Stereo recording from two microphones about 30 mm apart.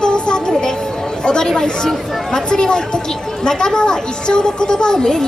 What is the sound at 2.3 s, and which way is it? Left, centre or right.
A child's voice, left.